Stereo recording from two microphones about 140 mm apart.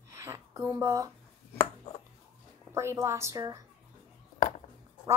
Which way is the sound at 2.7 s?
20° right (ahead or behind).